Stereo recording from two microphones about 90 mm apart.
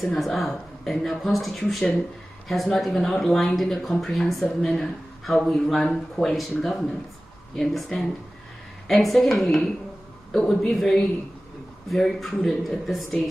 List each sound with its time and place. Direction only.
0.0 s a man's voice: centre (ahead or behind)